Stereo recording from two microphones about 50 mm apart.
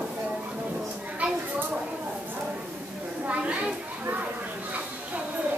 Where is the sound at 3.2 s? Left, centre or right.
Right.